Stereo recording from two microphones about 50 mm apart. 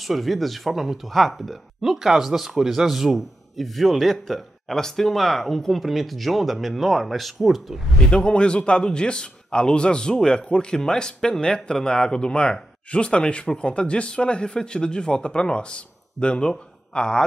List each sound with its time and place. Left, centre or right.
0.0 s speech: centre
8.1 s speech: left